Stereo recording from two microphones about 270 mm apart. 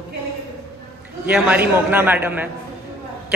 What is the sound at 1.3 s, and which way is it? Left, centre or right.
A man's voice, centre.